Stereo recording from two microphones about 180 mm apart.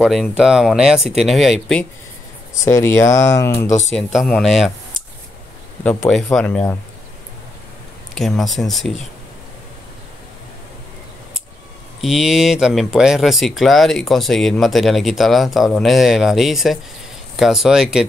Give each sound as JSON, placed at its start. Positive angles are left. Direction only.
{"t": 0.0, "sound": "speech", "side_deg": -5}
{"t": 2.6, "sound": "speech", "side_deg": 15}
{"t": 3.9, "sound": "speech", "side_deg": 0}
{"t": 6.0, "sound": "speech", "side_deg": 5}
{"t": 8.1, "sound": "speech", "side_deg": 0}
{"t": 12.0, "sound": "speech", "side_deg": -5}